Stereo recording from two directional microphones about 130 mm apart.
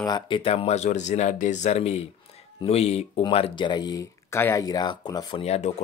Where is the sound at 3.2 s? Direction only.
45° left (ahead or behind).